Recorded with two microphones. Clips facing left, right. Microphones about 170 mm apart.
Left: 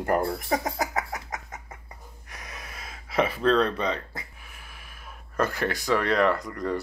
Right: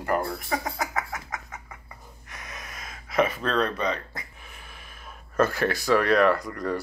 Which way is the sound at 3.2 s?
30° left (ahead or behind).